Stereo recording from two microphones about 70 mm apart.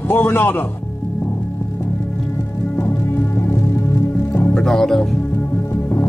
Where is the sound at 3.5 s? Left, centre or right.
Left.